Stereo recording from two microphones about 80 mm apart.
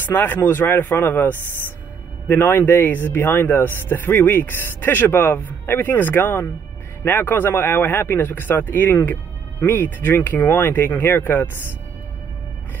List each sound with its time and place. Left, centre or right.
0.0 s speech: left